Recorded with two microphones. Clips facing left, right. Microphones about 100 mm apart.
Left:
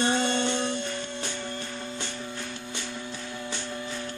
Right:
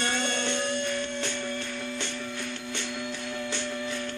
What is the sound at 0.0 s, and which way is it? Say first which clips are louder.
Music: left 4 dB; 30° left (ahead or behind).